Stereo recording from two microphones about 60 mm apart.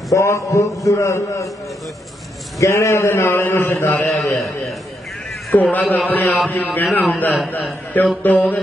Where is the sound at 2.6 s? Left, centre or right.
Left.